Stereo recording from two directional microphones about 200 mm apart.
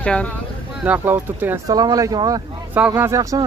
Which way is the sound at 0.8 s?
10° right (ahead or behind).